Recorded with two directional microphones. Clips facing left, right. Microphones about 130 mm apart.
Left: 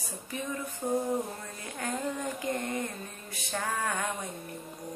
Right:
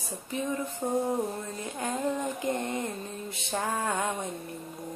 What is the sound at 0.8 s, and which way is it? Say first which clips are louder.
A woman's voice: right 1 dB; 25° right (ahead or behind).